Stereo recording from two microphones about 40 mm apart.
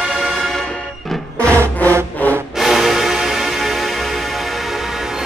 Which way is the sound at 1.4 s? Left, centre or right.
Left.